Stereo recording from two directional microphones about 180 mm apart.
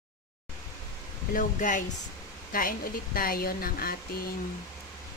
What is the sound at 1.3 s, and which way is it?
Speech, 45° left (ahead or behind).